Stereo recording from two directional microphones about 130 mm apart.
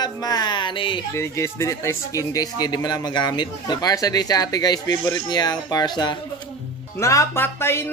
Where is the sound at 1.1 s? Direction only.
20° left (ahead or behind).